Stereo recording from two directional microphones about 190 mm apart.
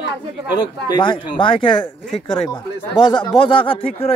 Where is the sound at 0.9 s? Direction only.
25° left (ahead or behind).